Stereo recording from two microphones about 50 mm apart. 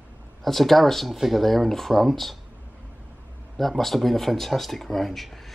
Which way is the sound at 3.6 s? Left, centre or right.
Centre.